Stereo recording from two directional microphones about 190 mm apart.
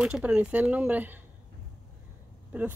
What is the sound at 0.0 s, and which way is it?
Speech, 5° right (ahead or behind).